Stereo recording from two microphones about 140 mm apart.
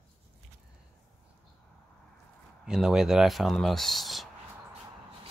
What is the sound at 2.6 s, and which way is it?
Speech, 5° right (ahead or behind).